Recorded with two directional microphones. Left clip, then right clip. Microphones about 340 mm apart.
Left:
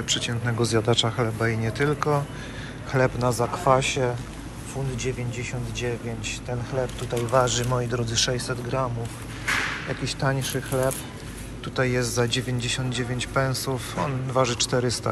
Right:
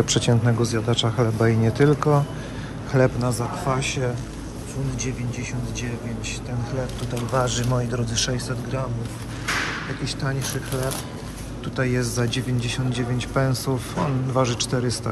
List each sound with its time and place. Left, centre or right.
0.0 s speech: centre
0.5 s a man's voice: centre
7.3 s speech: centre
10.0 s a man's voice: centre